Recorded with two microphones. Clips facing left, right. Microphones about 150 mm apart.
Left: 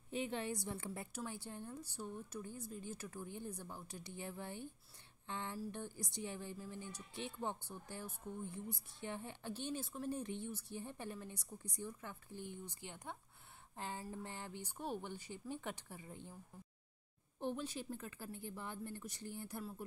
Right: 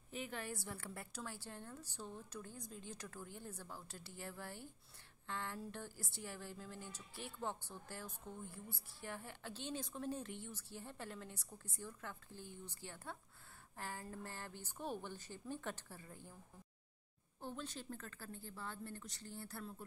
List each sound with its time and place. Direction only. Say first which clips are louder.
0.1 s a woman's voice: left 5 dB; 25° left (ahead or behind)
17.4 s a woman's voice: left 6 dB; 15° left (ahead or behind)